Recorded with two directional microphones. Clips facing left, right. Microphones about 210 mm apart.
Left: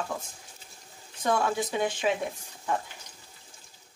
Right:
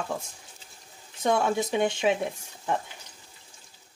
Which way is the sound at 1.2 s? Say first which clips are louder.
Right 2 dB; 25° right (ahead or behind).